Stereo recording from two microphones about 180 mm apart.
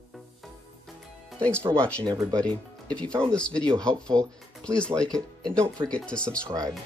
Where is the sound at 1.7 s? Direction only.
5° left (ahead or behind).